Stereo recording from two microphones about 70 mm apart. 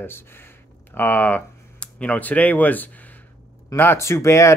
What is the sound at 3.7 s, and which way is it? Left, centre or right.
Speech, left.